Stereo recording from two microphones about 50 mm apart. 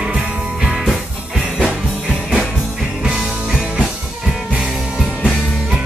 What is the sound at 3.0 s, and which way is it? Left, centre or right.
Music, centre.